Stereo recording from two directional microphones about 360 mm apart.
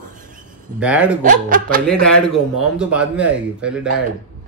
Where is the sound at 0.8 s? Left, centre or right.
Centre.